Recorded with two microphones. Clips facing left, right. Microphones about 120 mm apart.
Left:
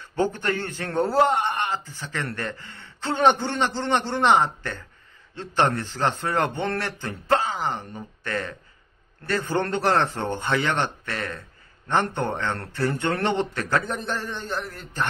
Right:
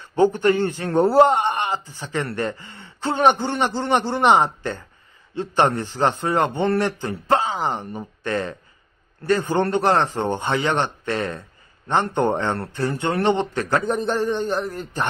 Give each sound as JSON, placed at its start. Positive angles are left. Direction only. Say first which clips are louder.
{"t": 0.1, "sound": "a man's voice", "louder": "right 7 dB", "side_deg": -15}